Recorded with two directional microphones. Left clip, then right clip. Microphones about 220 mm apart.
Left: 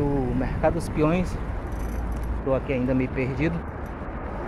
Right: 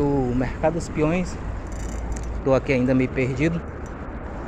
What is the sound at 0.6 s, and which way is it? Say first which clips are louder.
Speech: even; 5° right (ahead or behind).